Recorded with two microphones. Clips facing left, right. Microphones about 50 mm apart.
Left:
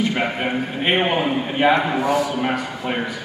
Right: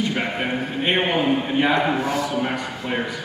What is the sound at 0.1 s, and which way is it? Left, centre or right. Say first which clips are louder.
A man's voice: left 2 dB; centre.